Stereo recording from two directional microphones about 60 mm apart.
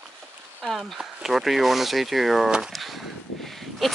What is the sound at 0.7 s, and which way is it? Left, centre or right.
Speech, centre.